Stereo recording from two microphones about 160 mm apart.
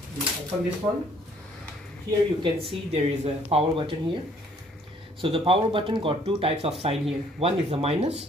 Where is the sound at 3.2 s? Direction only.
35° right (ahead or behind).